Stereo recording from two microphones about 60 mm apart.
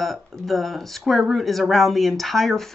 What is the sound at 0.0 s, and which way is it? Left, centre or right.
Speech, centre.